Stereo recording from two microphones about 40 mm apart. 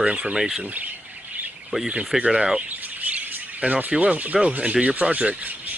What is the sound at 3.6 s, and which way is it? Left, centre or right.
Speech, right.